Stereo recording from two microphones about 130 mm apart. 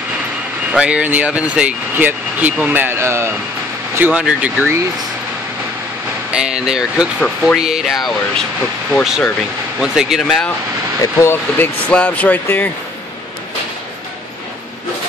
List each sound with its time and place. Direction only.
0.7 s speech: 10° right (ahead or behind)
4.0 s speech: 5° right (ahead or behind)
6.3 s speech: 5° right (ahead or behind)
9.8 s speech: 5° right (ahead or behind)
11.0 s speech: 20° left (ahead or behind)